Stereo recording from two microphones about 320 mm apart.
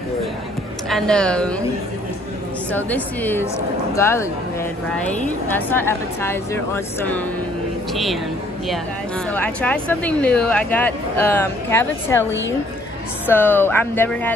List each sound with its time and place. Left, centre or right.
0.8 s speech: centre
2.7 s a woman's voice: centre
5.5 s a woman's voice: centre
9.3 s speech: centre
12.3 s a woman's voice: left
13.3 s a woman's voice: centre